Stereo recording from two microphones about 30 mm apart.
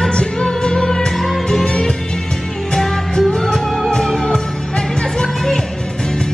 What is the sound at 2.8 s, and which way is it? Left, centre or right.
Music, left.